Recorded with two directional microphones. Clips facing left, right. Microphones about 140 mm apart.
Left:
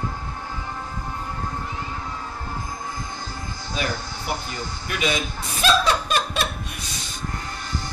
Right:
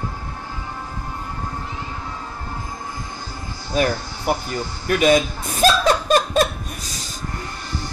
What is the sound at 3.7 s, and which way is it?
Speech, 45° right (ahead or behind).